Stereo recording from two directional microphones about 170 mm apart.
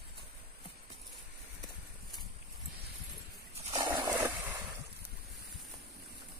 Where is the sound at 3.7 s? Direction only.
25° right (ahead or behind).